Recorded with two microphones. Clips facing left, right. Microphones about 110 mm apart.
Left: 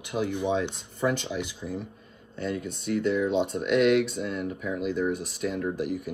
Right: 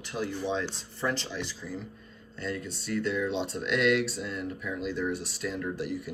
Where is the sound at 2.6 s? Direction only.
55° left (ahead or behind).